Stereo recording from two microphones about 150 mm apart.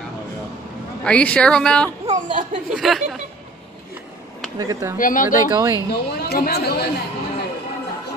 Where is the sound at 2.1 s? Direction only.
55° right (ahead or behind).